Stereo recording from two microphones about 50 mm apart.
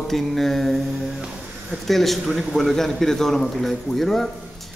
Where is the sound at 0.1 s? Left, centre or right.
Centre.